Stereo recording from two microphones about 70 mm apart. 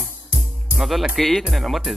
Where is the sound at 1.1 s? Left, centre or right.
Centre.